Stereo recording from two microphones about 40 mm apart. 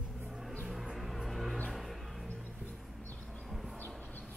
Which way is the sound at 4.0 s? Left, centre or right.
Left.